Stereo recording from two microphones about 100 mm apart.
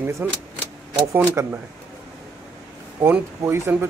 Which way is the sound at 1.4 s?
30° right (ahead or behind).